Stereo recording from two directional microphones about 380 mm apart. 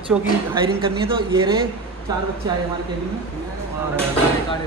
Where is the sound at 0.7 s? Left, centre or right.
Centre.